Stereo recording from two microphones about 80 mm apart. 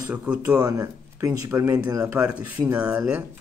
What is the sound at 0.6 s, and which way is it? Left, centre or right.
Speech, right.